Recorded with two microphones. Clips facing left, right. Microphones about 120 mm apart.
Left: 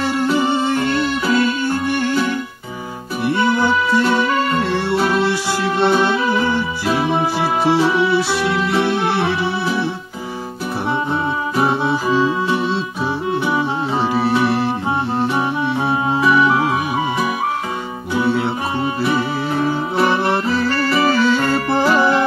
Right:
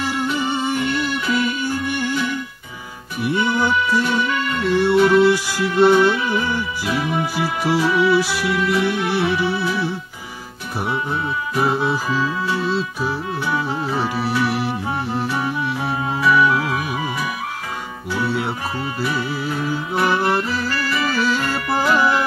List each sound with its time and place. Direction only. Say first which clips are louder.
1.2 s music: left 4 dB; 35° left (ahead or behind)
4.6 s music: right 3 dB; 20° left (ahead or behind)
4.9 s music: right 4 dB; 35° left (ahead or behind)
5.5 s music: right 1 dB; 20° left (ahead or behind)
6.1 s music: left 4 dB; 35° left (ahead or behind)
11.5 s music: left 1 dB; 30° left (ahead or behind)
18.8 s music: left 7 dB; 25° left (ahead or behind)